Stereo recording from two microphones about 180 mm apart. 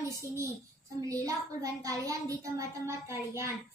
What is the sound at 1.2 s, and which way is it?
A woman's voice, 20° right (ahead or behind).